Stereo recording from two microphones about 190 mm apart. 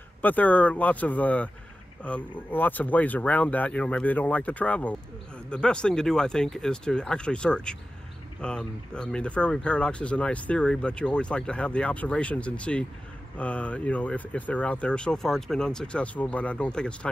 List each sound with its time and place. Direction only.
0.2 s speech: 10° left (ahead or behind)